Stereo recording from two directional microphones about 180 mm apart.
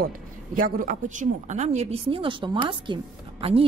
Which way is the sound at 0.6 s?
50° right (ahead or behind).